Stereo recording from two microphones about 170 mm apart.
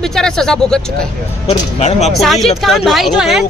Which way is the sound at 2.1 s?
Centre (ahead or behind).